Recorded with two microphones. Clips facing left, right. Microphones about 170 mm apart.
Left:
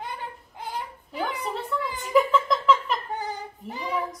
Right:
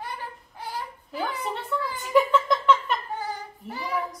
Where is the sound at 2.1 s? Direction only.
Centre (ahead or behind).